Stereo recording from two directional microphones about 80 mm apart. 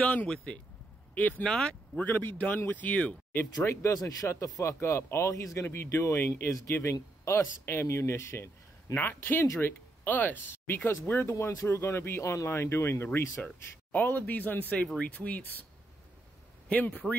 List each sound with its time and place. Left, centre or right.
0.0 s speech: centre
2.0 s speech: left
3.3 s speech: left
4.3 s speech: left
16.6 s speech: centre